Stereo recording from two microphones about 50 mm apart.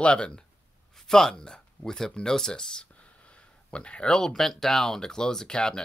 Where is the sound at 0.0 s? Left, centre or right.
Centre.